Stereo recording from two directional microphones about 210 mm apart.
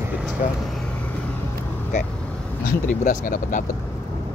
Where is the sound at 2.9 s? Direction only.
40° left (ahead or behind).